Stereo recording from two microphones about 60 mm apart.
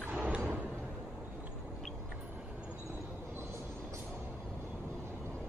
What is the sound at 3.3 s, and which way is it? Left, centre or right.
Vehicle, right.